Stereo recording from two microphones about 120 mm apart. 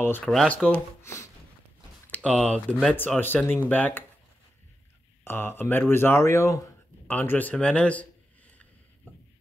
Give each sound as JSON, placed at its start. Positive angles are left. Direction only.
{"t": 0.2, "sound": "speech", "side_deg": 5}
{"t": 1.0, "sound": "speech", "side_deg": 25}
{"t": 2.0, "sound": "speech", "side_deg": 10}
{"t": 5.2, "sound": "speech", "side_deg": 20}
{"t": 7.1, "sound": "speech", "side_deg": 15}